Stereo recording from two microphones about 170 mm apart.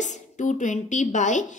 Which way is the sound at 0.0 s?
45° left (ahead or behind).